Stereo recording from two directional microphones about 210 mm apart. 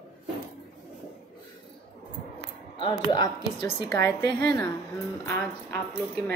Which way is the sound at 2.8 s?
20° left (ahead or behind).